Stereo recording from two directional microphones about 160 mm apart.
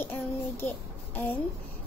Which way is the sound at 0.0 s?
15° left (ahead or behind).